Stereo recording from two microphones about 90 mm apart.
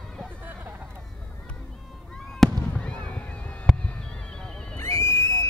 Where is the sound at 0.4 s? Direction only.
20° right (ahead or behind).